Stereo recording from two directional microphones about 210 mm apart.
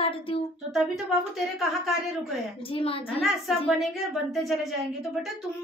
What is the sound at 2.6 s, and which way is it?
Speech, 25° left (ahead or behind).